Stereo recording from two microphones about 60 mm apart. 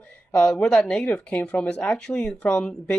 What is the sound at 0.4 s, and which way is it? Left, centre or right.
Speech, centre.